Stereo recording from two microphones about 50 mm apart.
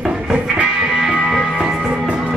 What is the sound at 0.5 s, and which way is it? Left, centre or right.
Music, right.